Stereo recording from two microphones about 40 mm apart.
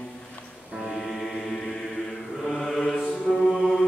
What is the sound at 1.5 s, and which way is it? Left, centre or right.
Chant, centre.